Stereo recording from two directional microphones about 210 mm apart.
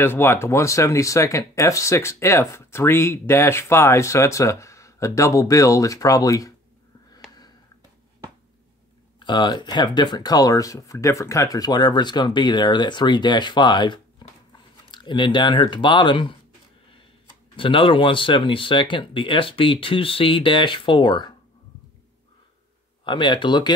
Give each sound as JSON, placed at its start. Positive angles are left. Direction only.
{"t": 0.0, "sound": "speech", "side_deg": 10}
{"t": 9.2, "sound": "speech", "side_deg": 20}
{"t": 17.6, "sound": "speech", "side_deg": 25}
{"t": 23.0, "sound": "speech", "side_deg": 20}